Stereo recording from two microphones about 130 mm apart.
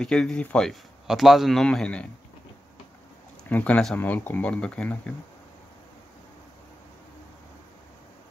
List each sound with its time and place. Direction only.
0.0 s a man's voice: 5° left (ahead or behind)
3.4 s speech: 10° left (ahead or behind)